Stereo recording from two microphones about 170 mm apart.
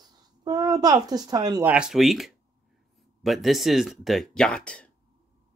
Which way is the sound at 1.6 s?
5° right (ahead or behind).